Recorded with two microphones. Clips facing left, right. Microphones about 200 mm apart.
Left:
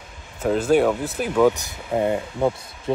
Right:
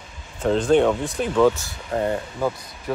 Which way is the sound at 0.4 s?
5° left (ahead or behind).